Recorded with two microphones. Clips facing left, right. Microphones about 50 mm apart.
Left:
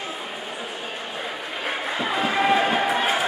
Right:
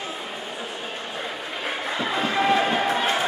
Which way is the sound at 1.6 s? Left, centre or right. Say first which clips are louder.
Left 1 dB; centre.